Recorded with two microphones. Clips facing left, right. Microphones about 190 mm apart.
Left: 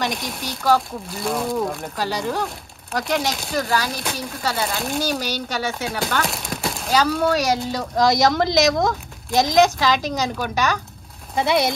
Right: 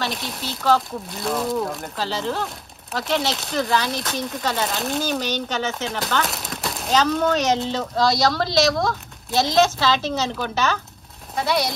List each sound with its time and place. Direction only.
0.1 s speech: centre (ahead or behind)
0.4 s speech: 10° left (ahead or behind)
1.1 s speech: centre (ahead or behind)
2.0 s speech: 15° left (ahead or behind)
5.2 s speech: 10° left (ahead or behind)
11.4 s speech: 25° left (ahead or behind)